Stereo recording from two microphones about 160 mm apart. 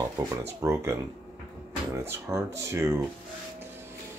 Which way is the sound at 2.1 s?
20° right (ahead or behind).